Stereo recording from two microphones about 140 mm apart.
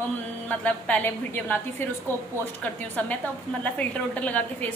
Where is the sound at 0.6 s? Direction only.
10° left (ahead or behind).